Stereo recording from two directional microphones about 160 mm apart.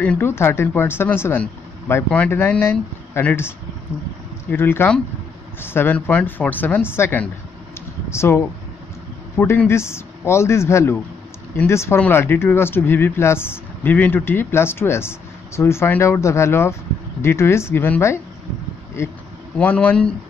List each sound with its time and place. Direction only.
0.0 s speech: 10° left (ahead or behind)